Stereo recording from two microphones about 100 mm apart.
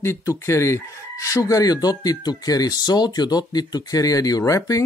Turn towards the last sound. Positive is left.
turn(degrees=35)  # may be behind; listen again after turning